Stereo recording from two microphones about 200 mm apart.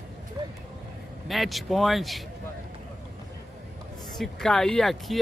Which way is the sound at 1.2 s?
Centre (ahead or behind).